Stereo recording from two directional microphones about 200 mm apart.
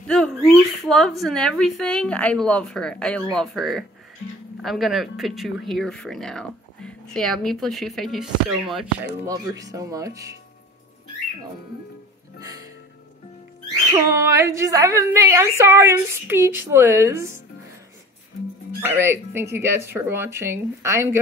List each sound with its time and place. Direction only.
0.0 s speech: 5° left (ahead or behind)
9.2 s a woman's voice: 15° right (ahead or behind)
13.9 s a woman's voice: 15° right (ahead or behind)
18.8 s a woman's voice: 15° right (ahead or behind)